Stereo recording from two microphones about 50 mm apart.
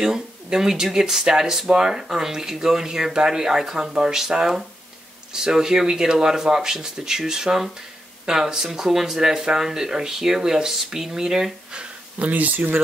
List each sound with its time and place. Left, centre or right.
0.0 s speech: centre
11.8 s speech: right